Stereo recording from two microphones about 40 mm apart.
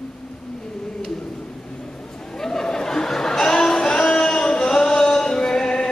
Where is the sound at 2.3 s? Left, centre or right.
Centre.